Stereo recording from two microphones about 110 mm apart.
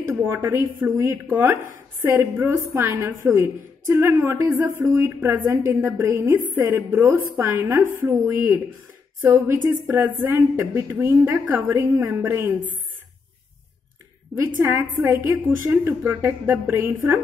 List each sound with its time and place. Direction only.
0.0 s a woman's voice: 25° right (ahead or behind)
14.6 s a woman's voice: 20° right (ahead or behind)